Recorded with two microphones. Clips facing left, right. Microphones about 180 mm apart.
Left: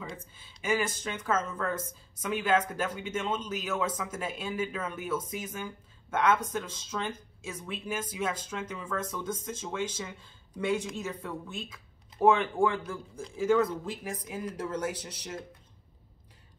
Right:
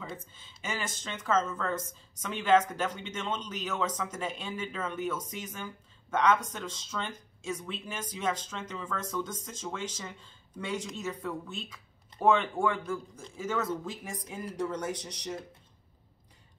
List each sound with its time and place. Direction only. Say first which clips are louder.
0.2 s a woman's voice: left 3 dB; 10° left (ahead or behind)
14.0 s speech: left 3 dB; centre (ahead or behind)